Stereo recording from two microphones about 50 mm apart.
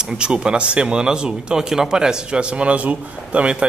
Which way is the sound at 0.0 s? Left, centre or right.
Centre.